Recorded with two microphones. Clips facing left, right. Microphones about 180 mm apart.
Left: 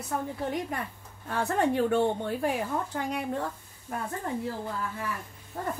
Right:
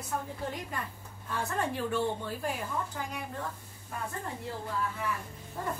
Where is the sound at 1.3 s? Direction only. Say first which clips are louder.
Left 6 dB; 60° left (ahead or behind).